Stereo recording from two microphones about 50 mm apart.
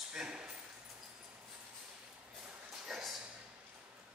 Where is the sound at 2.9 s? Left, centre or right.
Centre.